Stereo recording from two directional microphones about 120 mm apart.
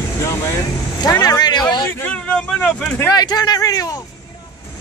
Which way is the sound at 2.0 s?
10° left (ahead or behind).